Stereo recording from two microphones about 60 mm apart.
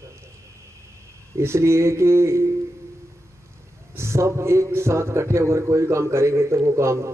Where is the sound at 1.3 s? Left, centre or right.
Right.